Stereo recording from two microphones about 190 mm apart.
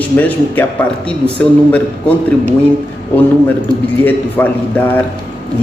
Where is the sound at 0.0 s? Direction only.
10° left (ahead or behind).